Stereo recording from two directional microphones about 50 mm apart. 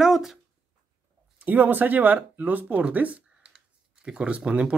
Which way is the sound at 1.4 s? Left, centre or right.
Right.